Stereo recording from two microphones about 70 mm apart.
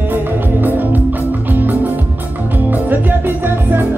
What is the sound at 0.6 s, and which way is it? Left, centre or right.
Music, right.